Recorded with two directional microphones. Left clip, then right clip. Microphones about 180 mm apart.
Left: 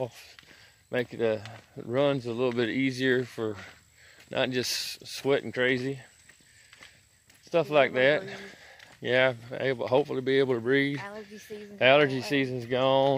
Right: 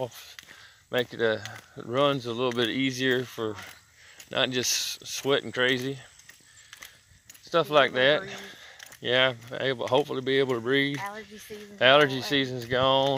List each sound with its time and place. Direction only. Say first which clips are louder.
0.0 s speech: right 1 dB; 10° left (ahead or behind)
7.4 s speech: right 1 dB; 10° left (ahead or behind)
11.0 s speech: right 4 dB; 10° right (ahead or behind)
11.8 s speech: right 2 dB; 15° left (ahead or behind)